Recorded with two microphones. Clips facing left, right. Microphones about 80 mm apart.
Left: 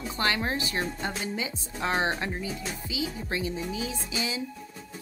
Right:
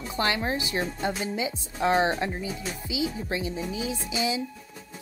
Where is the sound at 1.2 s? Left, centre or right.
Right.